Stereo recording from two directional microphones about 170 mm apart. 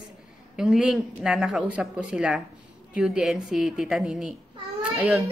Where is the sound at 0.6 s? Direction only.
5° right (ahead or behind).